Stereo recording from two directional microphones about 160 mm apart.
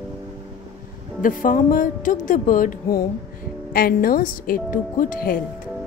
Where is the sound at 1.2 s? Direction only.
55° left (ahead or behind).